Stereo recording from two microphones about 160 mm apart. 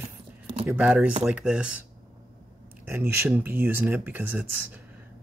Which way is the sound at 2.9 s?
15° right (ahead or behind).